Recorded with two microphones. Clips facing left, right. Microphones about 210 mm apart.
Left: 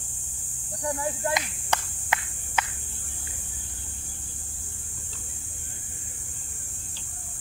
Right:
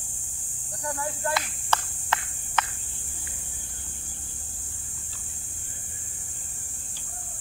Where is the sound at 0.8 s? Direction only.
15° left (ahead or behind).